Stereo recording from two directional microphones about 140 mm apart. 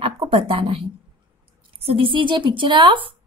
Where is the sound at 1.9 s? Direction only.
40° right (ahead or behind).